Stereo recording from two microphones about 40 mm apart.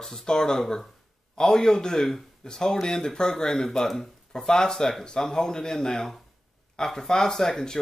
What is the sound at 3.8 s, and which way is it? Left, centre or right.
Speech, centre.